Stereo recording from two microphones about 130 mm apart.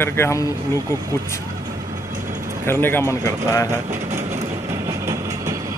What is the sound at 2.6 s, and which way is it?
Speech, 15° left (ahead or behind).